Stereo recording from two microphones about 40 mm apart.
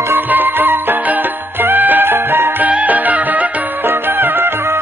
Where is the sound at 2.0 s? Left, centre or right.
Right.